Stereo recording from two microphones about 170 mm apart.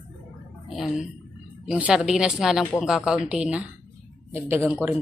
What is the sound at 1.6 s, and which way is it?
A woman's voice, 5° right (ahead or behind).